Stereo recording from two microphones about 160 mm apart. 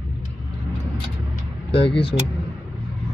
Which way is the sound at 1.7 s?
35° left (ahead or behind).